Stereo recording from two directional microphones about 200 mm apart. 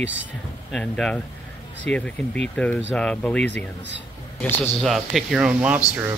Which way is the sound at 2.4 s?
5° left (ahead or behind).